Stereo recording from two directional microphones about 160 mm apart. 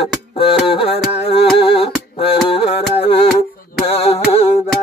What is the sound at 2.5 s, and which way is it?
Music, 35° left (ahead or behind).